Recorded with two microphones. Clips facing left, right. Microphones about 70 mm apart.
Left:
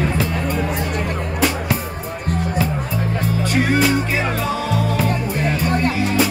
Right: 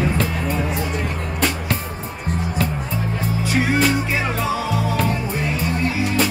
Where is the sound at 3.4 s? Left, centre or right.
Centre.